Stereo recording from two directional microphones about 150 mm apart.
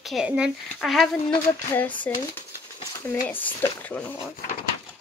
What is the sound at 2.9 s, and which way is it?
Speech, 20° left (ahead or behind).